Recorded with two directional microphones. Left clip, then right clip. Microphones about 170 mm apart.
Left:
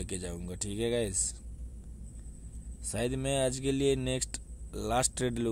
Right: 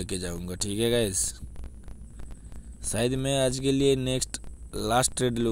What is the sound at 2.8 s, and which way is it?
Speech, 35° right (ahead or behind).